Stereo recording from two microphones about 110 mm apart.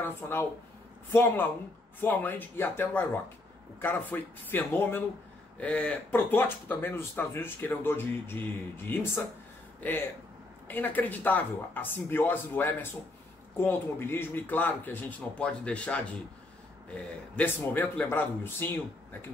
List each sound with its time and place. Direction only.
0.0 s speech: 20° left (ahead or behind)